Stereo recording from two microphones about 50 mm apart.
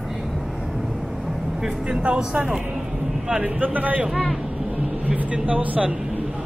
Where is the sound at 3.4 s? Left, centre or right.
Right.